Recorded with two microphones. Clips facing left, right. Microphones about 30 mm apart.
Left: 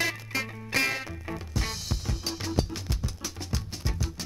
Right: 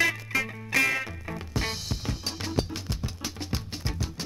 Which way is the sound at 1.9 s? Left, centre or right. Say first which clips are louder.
Even; centre.